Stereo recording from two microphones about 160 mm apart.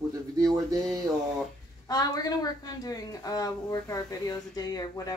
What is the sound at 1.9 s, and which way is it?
Speech, 25° left (ahead or behind).